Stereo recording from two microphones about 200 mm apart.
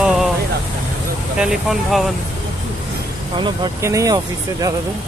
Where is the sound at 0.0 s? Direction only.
Centre (ahead or behind).